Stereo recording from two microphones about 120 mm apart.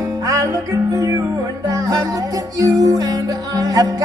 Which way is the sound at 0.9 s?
25° right (ahead or behind).